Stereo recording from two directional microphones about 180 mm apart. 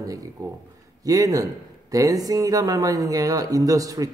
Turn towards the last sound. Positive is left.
turn(degrees=-20)  # may be behind; listen again after turning